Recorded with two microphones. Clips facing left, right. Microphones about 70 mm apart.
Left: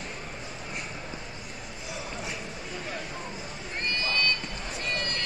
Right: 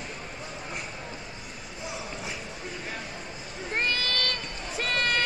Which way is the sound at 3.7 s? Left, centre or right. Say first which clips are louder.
Right 1 dB; right.